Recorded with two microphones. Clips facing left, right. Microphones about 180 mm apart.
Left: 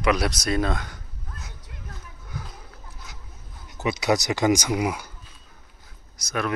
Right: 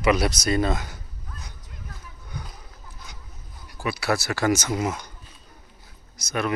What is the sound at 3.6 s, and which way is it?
Speech, 20° left (ahead or behind).